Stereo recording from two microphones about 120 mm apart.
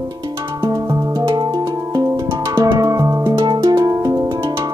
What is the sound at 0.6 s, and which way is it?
Music, 30° right (ahead or behind).